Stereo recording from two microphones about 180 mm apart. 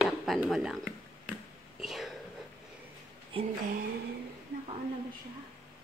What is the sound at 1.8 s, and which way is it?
Whispering, centre (ahead or behind).